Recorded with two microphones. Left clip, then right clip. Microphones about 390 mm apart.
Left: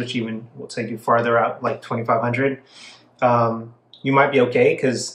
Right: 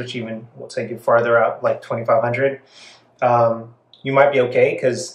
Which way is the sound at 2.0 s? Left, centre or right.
Centre.